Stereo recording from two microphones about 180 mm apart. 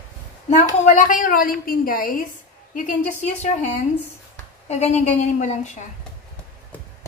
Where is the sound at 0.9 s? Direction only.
45° left (ahead or behind).